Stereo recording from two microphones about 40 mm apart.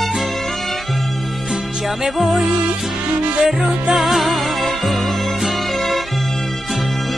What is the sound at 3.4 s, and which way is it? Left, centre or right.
Music, centre.